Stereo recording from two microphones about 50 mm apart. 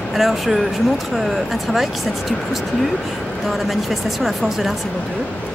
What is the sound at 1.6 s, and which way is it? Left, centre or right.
Speech, centre.